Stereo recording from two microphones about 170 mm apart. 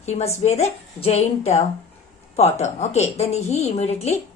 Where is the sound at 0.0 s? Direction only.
40° left (ahead or behind).